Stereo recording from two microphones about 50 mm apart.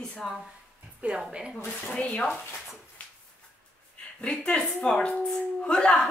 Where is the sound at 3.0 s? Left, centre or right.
Left.